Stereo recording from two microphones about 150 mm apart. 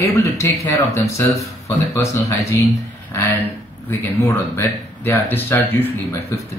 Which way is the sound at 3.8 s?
15° left (ahead or behind).